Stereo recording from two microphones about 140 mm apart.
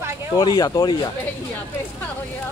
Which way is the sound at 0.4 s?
30° left (ahead or behind).